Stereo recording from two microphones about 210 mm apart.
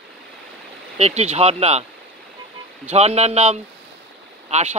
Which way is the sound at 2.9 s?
30° right (ahead or behind).